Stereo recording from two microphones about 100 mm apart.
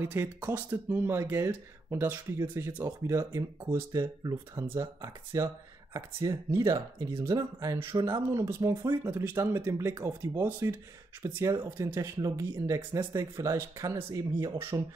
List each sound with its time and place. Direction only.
0.0 s speech: 25° right (ahead or behind)
4.2 s speech: 40° right (ahead or behind)